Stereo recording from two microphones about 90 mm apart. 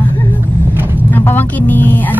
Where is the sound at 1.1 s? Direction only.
20° left (ahead or behind).